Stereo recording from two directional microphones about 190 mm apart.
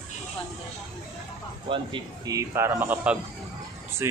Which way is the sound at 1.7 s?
25° right (ahead or behind).